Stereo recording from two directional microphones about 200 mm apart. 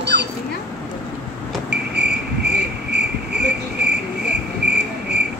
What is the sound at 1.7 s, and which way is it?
Cricket, 55° right (ahead or behind).